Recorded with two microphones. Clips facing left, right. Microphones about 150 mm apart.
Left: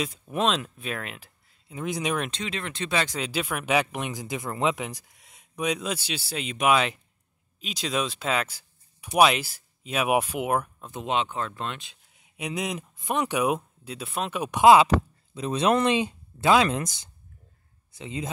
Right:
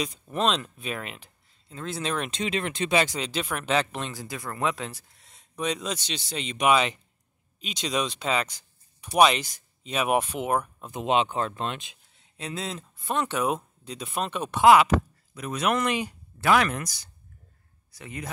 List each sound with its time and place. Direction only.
0.0 s speech: 5° left (ahead or behind)
1.8 s speech: 15° left (ahead or behind)
2.3 s speech: 20° right (ahead or behind)
3.1 s speech: 5° left (ahead or behind)
10.9 s speech: 15° right (ahead or behind)
12.1 s speech: 10° left (ahead or behind)